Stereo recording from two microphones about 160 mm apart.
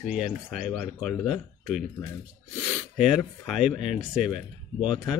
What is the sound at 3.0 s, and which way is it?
Speech, 5° right (ahead or behind).